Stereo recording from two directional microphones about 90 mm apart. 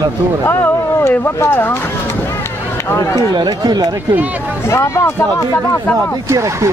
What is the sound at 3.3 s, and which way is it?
Speech, 50° right (ahead or behind).